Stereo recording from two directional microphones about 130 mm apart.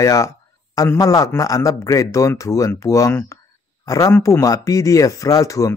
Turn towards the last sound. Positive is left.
turn(degrees=25)  # may be behind; listen again after turning